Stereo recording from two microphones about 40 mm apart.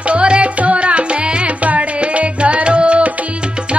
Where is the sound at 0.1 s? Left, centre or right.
Right.